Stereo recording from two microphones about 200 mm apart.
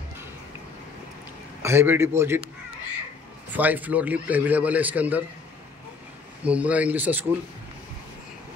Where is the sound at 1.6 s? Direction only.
10° right (ahead or behind).